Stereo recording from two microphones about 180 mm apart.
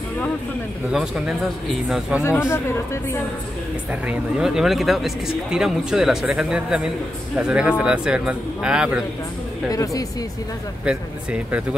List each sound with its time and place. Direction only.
0.9 s speech: centre (ahead or behind)
2.2 s speech: 15° left (ahead or behind)
4.1 s speech: 5° right (ahead or behind)
9.7 s speech: 20° left (ahead or behind)